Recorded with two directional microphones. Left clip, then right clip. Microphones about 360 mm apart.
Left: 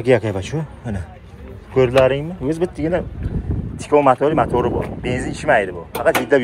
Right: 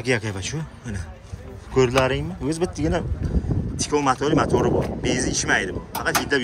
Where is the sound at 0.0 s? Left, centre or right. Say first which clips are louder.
Left 8 dB; centre.